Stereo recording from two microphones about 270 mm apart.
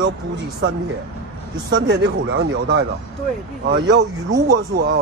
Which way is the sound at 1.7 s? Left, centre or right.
Right.